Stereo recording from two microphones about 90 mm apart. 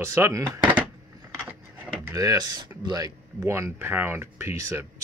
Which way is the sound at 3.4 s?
30° right (ahead or behind).